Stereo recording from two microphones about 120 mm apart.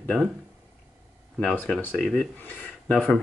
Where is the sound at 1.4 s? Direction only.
15° left (ahead or behind).